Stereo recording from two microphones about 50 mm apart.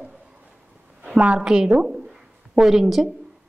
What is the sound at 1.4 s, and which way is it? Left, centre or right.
A woman's voice, centre.